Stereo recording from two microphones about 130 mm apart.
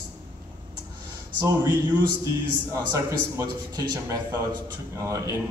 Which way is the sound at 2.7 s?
25° right (ahead or behind).